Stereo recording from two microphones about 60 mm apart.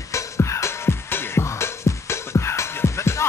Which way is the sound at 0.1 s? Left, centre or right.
Left.